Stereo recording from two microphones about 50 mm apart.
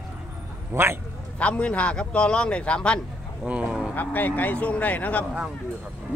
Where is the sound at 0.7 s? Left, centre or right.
Right.